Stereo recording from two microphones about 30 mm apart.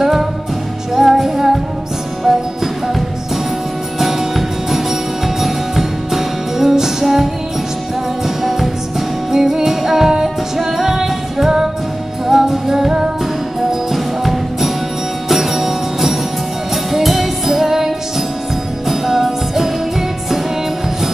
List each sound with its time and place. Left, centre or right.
0.0 s music: centre
4.0 s music: centre
9.3 s music: centre